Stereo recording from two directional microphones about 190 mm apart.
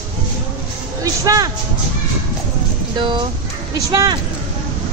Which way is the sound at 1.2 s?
20° right (ahead or behind).